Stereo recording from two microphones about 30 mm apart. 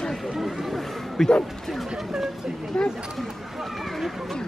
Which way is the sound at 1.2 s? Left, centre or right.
Centre.